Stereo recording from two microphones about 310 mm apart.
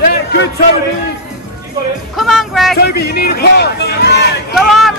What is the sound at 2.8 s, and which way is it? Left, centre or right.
Speech, left.